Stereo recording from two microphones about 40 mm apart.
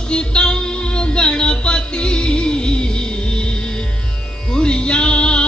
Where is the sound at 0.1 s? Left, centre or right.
Left.